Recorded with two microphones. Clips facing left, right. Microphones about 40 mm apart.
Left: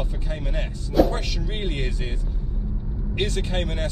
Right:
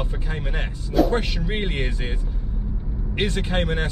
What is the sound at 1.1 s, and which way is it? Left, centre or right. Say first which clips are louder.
Speech: right 5 dB; right.